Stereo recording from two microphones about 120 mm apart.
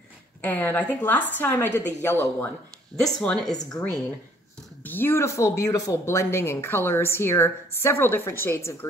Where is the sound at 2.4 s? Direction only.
10° left (ahead or behind).